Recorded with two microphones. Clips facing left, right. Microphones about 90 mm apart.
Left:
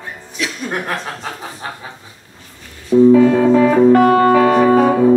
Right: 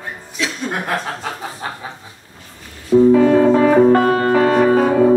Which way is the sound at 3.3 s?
35° right (ahead or behind).